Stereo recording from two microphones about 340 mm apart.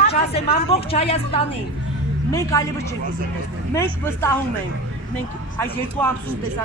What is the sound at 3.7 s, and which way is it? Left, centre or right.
Speech, centre.